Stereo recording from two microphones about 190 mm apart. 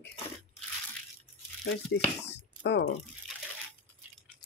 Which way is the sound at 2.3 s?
65° left (ahead or behind).